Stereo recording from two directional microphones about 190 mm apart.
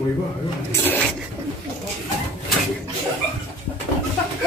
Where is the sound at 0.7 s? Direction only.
10° left (ahead or behind).